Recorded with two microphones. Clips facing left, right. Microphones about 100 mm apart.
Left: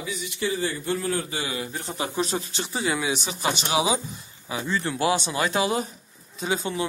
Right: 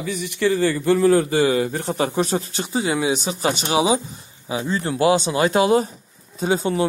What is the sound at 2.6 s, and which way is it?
Speech, 25° right (ahead or behind).